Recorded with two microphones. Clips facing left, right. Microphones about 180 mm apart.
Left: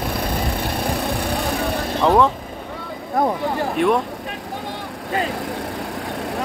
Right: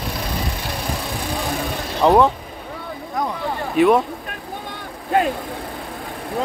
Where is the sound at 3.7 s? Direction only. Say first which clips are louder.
Right 5 dB; 5° right (ahead or behind).